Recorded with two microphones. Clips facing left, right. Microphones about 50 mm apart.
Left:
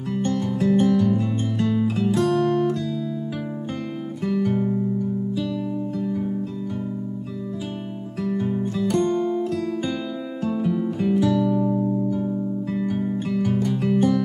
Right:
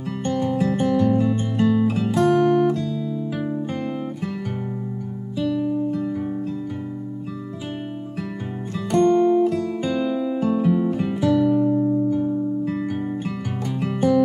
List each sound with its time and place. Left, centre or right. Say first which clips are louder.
0.2 s music: right 2 dB; centre
4.3 s guitar: left 7 dB; centre
5.4 s music: right 4 dB; centre
8.9 s music: right 8 dB; centre
9.8 s music: right 6 dB; right
11.6 s music: right 3 dB; centre